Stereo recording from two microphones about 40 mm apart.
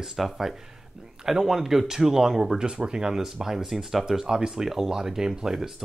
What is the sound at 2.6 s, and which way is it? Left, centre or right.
Speech, centre.